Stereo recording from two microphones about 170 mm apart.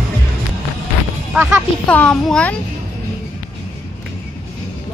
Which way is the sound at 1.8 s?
5° left (ahead or behind).